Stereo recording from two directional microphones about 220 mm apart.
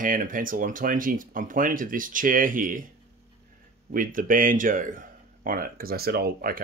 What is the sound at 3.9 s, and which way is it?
Speech, 40° right (ahead or behind).